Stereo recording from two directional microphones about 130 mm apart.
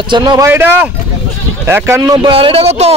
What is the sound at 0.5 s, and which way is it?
Speech, 15° right (ahead or behind).